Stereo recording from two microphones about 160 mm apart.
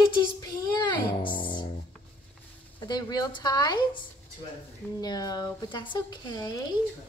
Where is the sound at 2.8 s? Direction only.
25° left (ahead or behind).